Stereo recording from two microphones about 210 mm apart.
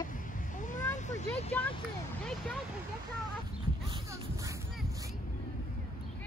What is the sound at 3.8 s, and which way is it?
Music, 20° right (ahead or behind).